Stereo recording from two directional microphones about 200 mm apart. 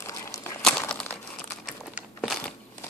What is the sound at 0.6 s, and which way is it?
Crumpling, centre (ahead or behind).